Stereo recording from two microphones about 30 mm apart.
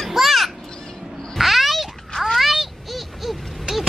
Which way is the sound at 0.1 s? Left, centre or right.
Centre.